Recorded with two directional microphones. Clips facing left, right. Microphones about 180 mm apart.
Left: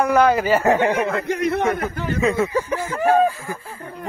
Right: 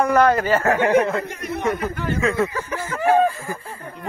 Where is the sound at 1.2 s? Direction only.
75° left (ahead or behind).